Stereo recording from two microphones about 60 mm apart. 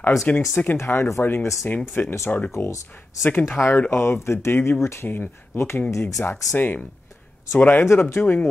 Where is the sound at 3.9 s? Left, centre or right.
Left.